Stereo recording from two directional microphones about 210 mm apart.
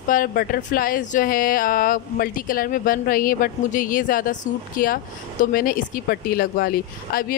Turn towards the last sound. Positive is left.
turn(degrees=45)  # may be behind; listen again after turning